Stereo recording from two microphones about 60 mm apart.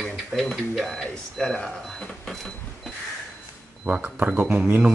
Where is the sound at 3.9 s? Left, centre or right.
Right.